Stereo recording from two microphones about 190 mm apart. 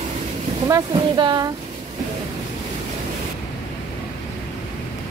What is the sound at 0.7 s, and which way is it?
Speech, 20° right (ahead or behind).